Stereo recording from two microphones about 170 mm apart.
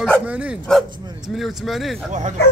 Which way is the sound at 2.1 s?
45° right (ahead or behind).